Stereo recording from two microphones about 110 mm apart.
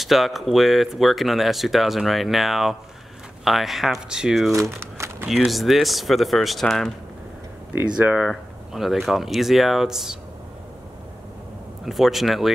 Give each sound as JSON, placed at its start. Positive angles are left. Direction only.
{"t": 0.0, "sound": "speech", "side_deg": 0}
{"t": 4.6, "sound": "crumpling", "side_deg": -25}
{"t": 5.3, "sound": "speech", "side_deg": 0}
{"t": 7.7, "sound": "speech", "side_deg": -15}
{"t": 8.3, "sound": "speech", "side_deg": 0}
{"t": 11.8, "sound": "speech", "side_deg": 0}